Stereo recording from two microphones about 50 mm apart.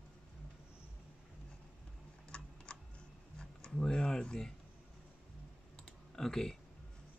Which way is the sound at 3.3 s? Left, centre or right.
Centre.